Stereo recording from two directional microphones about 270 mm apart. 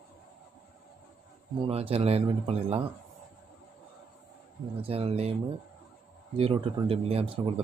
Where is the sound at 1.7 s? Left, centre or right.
Right.